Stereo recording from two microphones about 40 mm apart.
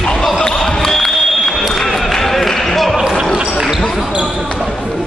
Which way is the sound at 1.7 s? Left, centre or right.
Centre.